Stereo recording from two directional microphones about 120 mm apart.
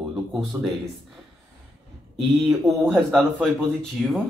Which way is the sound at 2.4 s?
Centre (ahead or behind).